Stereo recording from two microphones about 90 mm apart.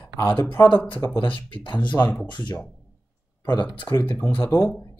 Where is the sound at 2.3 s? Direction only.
50° left (ahead or behind).